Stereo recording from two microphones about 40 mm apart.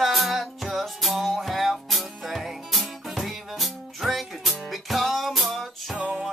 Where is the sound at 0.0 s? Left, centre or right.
Centre.